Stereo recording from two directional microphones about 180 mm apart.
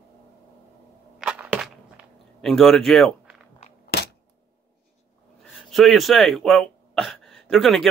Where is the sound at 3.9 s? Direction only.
65° left (ahead or behind).